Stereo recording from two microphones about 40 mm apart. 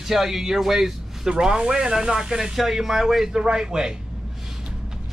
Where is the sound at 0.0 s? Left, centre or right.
Centre.